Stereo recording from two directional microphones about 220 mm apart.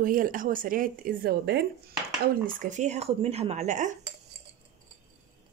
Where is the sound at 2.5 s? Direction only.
35° right (ahead or behind).